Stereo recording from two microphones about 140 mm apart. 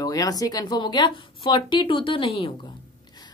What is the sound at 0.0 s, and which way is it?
Speech, 25° left (ahead or behind).